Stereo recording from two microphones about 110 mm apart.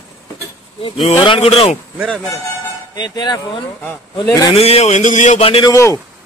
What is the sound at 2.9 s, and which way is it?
Speech, 40° left (ahead or behind).